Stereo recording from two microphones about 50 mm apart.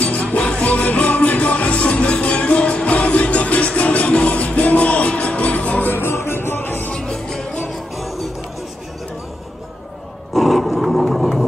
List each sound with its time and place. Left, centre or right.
0.0 s music: left
5.9 s music: left
7.0 s music: centre
10.3 s roar: centre